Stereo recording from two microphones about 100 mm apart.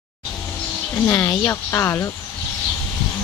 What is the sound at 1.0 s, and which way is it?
Speech, 25° left (ahead or behind).